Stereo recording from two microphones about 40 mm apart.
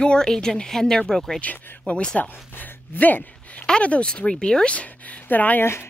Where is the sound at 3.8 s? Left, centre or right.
Left.